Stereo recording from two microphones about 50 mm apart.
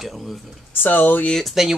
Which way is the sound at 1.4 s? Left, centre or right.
Centre.